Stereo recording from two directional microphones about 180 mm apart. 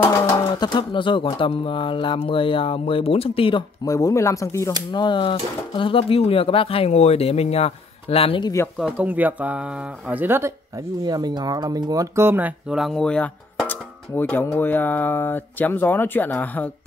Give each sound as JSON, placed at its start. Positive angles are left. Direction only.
{"t": 0.0, "sound": "speech", "side_deg": 15}
{"t": 8.7, "sound": "speech", "side_deg": -5}